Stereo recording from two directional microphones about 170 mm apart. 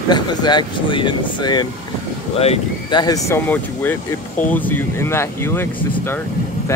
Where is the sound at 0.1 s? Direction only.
25° left (ahead or behind).